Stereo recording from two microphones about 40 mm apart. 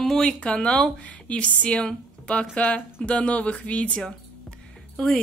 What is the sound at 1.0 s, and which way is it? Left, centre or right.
Speech, left.